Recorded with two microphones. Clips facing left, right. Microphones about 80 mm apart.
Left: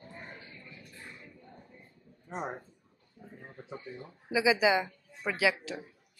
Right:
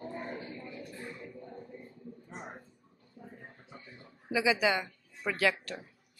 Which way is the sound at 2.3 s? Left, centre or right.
Left.